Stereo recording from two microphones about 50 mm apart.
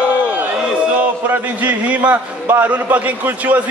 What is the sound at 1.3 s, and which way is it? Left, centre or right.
Speech, right.